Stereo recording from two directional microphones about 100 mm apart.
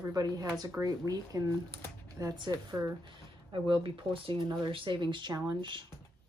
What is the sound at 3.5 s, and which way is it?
Speech, 55° right (ahead or behind).